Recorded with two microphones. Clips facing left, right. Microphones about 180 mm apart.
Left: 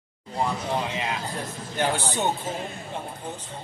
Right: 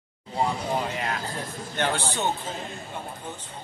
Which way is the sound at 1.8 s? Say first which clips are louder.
Left 2 dB; 15° left (ahead or behind).